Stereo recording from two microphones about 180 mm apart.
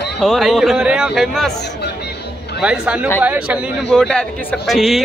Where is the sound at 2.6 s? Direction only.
5° right (ahead or behind).